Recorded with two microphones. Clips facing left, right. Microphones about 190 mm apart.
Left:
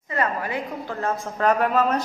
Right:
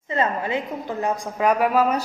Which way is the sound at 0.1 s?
25° right (ahead or behind).